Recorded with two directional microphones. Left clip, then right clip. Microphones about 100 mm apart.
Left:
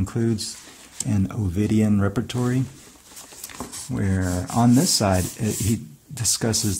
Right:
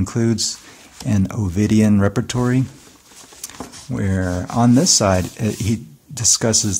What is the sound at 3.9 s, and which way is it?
Speech, 15° right (ahead or behind).